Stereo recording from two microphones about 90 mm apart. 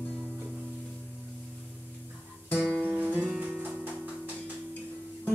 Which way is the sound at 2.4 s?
15° left (ahead or behind).